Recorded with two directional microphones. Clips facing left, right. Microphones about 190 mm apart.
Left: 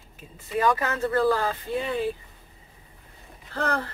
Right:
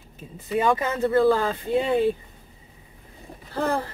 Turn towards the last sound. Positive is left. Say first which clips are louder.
# right 3 dB
turn(degrees=-10)  # may be behind; listen again after turning